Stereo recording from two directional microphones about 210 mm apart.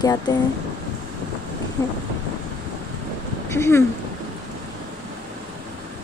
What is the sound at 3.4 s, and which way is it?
Speech, 10° left (ahead or behind).